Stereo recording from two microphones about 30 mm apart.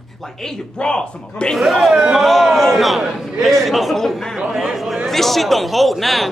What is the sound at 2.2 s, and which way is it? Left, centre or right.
Speech, centre.